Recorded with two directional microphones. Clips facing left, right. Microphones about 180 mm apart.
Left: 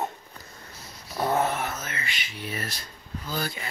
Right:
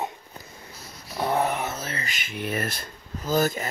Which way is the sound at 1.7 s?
35° right (ahead or behind).